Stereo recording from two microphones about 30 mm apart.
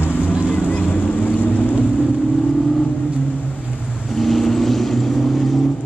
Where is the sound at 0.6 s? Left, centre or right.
Left.